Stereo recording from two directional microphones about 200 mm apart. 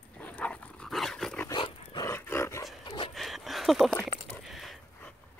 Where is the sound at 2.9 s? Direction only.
30° left (ahead or behind).